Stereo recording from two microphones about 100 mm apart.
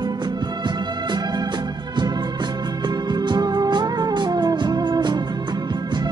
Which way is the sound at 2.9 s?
45° right (ahead or behind).